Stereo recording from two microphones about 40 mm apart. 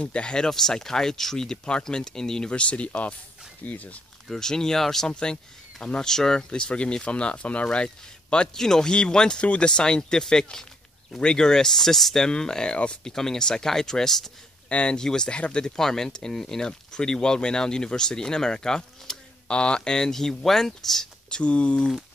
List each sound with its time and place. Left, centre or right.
0.0 s speech: left
0.5 s speech: centre
2.5 s speech: left
4.3 s speech: centre
5.1 s speech: left
8.5 s speech: centre
12.2 s speech: centre
14.7 s speech: left
15.0 s speech: centre
15.3 s speech: left
15.6 s speech: centre
19.4 s speech: left; by 21.1 s centre
21.3 s speech: left